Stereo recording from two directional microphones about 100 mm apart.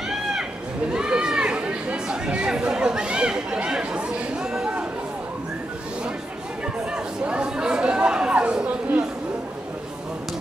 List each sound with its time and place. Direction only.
0.1 s a sound: 5° right (ahead or behind)
0.9 s chatter: 10° right (ahead or behind)
7.2 s chatter: 10° right (ahead or behind)